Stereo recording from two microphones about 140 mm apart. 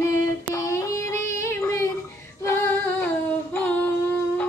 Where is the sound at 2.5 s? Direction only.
15° left (ahead or behind).